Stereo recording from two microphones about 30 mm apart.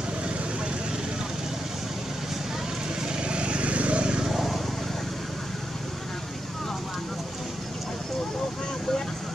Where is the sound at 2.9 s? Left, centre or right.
Right.